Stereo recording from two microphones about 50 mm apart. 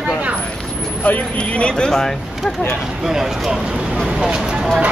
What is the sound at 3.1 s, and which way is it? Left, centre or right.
Speech, centre.